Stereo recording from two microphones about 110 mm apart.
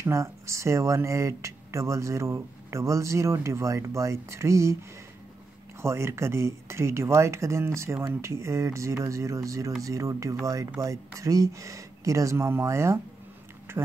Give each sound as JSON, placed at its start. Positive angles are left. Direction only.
{"t": 0.0, "sound": "speech", "side_deg": -25}
{"t": 5.8, "sound": "speech", "side_deg": -25}
{"t": 13.7, "sound": "tick-tock", "side_deg": -20}